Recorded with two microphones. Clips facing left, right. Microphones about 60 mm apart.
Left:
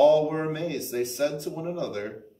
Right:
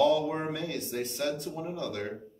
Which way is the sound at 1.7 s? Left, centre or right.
Left.